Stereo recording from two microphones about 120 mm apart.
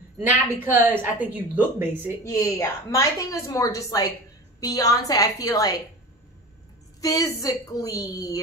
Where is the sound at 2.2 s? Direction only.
25° left (ahead or behind).